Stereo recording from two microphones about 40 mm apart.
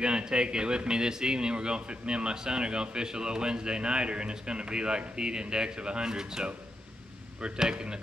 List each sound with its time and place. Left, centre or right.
0.0 s speech: right